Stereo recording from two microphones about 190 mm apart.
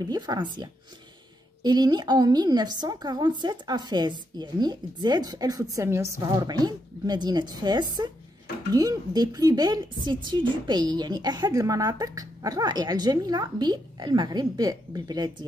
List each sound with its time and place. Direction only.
0.0 s a woman's voice: 20° right (ahead or behind)